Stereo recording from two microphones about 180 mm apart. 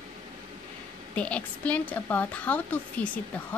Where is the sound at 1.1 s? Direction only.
5° left (ahead or behind).